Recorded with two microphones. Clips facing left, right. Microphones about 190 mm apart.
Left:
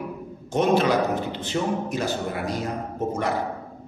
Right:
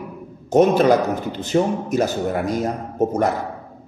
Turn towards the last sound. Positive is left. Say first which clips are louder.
# right 7 dB
turn(degrees=-45)  # may be behind; listen again after turning